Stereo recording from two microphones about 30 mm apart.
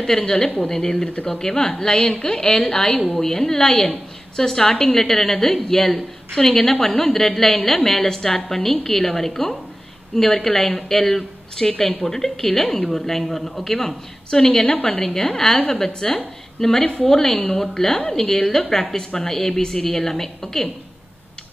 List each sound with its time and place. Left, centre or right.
0.1 s a woman's voice: left
0.7 s a woman's voice: centre